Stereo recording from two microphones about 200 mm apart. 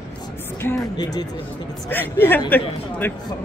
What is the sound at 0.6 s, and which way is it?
Speech, 15° left (ahead or behind).